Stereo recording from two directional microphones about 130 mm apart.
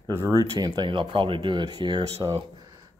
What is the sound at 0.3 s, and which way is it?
Speech, 30° right (ahead or behind).